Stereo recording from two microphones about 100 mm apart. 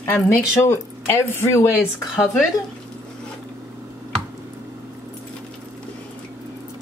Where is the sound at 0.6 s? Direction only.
25° left (ahead or behind).